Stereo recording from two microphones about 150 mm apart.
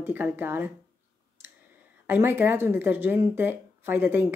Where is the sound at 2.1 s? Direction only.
15° right (ahead or behind).